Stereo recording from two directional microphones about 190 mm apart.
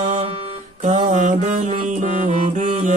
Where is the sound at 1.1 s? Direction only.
40° right (ahead or behind).